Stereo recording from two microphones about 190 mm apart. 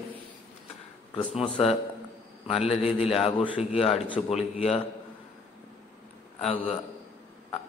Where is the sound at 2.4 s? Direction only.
30° left (ahead or behind).